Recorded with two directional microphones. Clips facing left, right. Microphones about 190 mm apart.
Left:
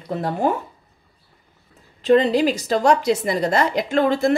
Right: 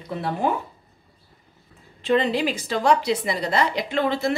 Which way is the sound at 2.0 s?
40° left (ahead or behind).